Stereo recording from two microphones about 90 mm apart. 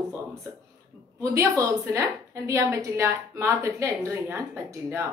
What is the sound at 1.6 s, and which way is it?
A woman's voice, 35° right (ahead or behind).